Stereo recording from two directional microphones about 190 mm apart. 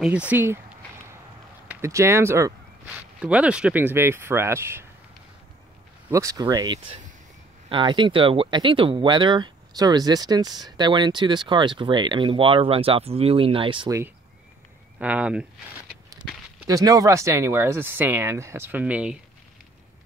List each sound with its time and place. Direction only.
0.0 s speech: 5° right (ahead or behind)
6.0 s speech: 15° right (ahead or behind)
15.0 s speech: 5° right (ahead or behind)
16.2 s a sound: 5° right (ahead or behind)
16.6 s speech: 20° right (ahead or behind)